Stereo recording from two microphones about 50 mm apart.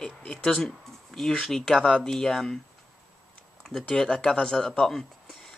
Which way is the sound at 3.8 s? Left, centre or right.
Centre.